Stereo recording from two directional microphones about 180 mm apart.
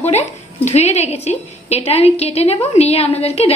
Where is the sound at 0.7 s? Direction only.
40° left (ahead or behind).